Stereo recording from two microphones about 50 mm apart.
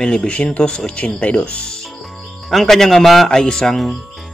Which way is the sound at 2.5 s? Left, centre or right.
Centre.